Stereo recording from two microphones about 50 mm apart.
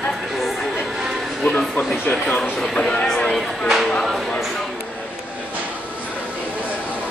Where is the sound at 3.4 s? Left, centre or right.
Centre.